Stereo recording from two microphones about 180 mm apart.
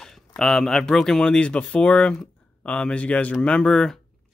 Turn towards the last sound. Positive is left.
turn(degrees=5)  # may be behind; listen again after turning